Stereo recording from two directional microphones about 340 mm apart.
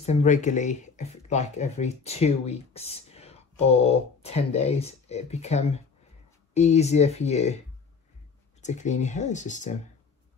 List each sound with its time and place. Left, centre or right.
0.0 s speech: centre
8.6 s speech: left